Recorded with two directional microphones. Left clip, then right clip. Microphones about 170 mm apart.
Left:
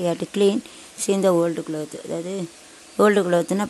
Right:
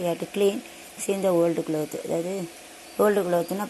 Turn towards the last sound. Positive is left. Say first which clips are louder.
# left 4 dB
turn(degrees=45)  # may be behind; listen again after turning